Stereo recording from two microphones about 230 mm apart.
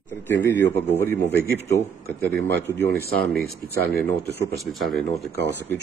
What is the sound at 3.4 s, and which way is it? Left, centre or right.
Speech, left.